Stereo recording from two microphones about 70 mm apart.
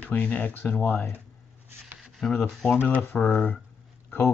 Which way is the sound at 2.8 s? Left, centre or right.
Left.